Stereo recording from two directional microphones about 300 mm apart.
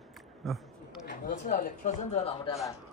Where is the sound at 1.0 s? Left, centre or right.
Left.